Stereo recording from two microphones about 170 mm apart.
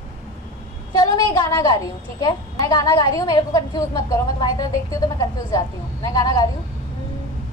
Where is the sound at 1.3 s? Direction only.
25° left (ahead or behind).